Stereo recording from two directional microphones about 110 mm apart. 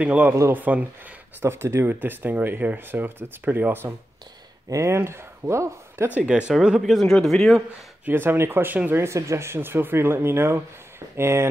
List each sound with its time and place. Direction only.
0.0 s speech: 10° right (ahead or behind)
6.1 s speech: 10° right (ahead or behind)
8.0 s speech: 20° right (ahead or behind)